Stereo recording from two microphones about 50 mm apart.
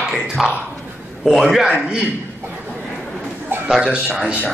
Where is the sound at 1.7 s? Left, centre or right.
Right.